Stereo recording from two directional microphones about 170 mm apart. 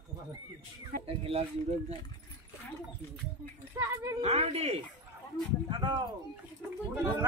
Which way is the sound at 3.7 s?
15° right (ahead or behind).